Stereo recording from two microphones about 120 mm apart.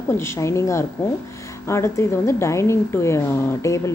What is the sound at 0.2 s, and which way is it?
A woman's voice, 25° left (ahead or behind).